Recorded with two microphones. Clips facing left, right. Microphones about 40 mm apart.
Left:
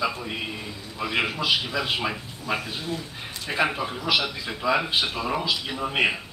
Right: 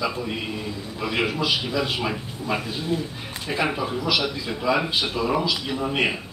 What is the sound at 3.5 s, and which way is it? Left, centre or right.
A man's voice, centre.